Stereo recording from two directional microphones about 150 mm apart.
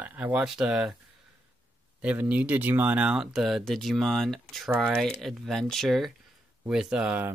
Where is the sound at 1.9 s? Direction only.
10° right (ahead or behind).